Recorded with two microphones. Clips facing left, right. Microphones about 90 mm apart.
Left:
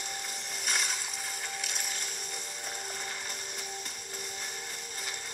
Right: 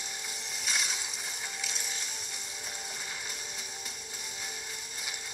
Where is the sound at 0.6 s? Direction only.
50° left (ahead or behind).